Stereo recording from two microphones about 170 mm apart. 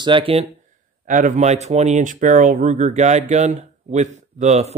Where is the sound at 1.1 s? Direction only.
45° right (ahead or behind).